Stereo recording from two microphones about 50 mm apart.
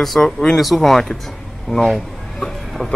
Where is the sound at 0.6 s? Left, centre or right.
Centre.